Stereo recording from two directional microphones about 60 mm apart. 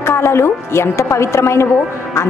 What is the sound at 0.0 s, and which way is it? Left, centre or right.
A woman's voice, left.